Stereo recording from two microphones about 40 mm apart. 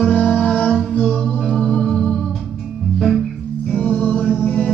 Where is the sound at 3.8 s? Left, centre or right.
Left.